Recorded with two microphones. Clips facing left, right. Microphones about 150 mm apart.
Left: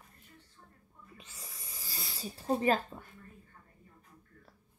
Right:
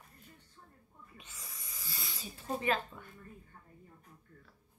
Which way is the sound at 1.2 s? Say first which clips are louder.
Left 1 dB; 35° left (ahead or behind).